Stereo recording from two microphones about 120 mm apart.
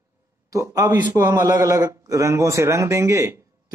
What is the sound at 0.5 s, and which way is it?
Speech, 30° right (ahead or behind).